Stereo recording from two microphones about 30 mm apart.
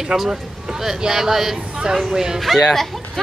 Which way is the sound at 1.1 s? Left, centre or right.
Centre.